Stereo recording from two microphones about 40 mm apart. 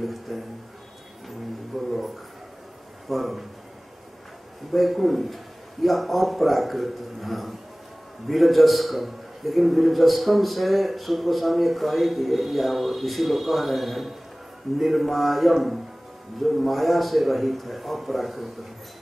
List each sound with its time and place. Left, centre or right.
0.0 s a man's voice: centre
1.7 s speech: centre
3.1 s a man's voice: centre
4.7 s a man's voice: centre